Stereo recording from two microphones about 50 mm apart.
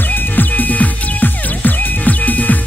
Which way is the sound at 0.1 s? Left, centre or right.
Left.